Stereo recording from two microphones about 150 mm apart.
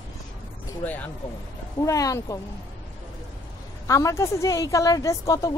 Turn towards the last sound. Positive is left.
turn(degrees=20)  # may be behind; listen again after turning